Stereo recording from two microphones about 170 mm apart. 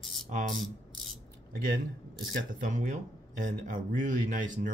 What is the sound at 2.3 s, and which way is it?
Speech, 50° right (ahead or behind).